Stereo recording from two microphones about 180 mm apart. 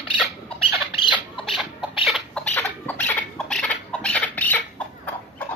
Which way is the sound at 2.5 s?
10° left (ahead or behind).